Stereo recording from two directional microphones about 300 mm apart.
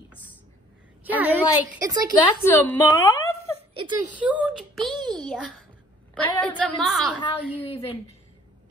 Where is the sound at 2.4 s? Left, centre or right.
Centre.